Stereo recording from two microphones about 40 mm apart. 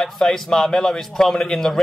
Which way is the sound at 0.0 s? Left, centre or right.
Centre.